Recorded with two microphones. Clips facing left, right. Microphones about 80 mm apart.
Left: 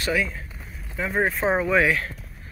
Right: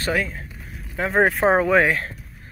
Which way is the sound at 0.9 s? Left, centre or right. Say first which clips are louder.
Right 5 dB; right.